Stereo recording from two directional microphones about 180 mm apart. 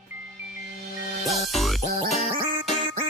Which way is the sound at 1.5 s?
Centre (ahead or behind).